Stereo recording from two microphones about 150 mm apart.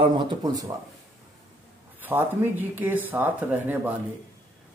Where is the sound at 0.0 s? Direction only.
35° right (ahead or behind).